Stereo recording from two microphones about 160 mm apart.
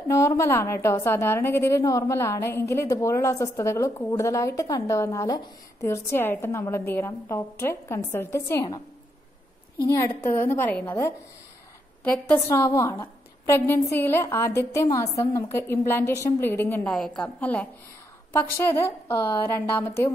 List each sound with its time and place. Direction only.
0.1 s a woman's voice: 20° left (ahead or behind)
9.8 s a woman's voice: 15° left (ahead or behind)